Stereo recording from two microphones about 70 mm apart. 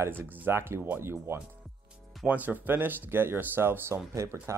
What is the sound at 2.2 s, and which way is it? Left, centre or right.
Speech, right.